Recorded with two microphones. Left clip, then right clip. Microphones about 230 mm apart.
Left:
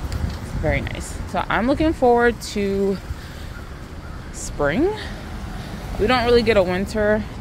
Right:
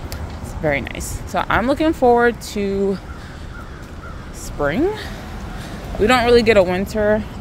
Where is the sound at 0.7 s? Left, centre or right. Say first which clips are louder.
Right 3 dB; centre.